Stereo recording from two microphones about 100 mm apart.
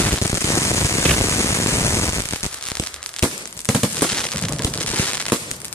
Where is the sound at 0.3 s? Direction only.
30° left (ahead or behind).